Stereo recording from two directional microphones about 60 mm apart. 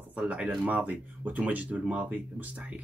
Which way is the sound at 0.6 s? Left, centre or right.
Right.